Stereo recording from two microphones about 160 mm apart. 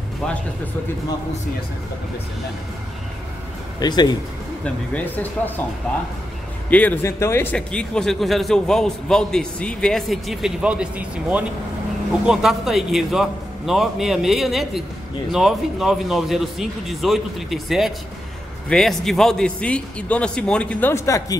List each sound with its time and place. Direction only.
3.8 s speech: 25° left (ahead or behind)
4.9 s speech: 10° left (ahead or behind)
6.7 s speech: 10° left (ahead or behind)
20.9 s speech: 20° left (ahead or behind)